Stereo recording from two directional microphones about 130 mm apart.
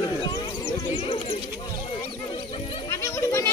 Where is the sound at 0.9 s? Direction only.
40° left (ahead or behind).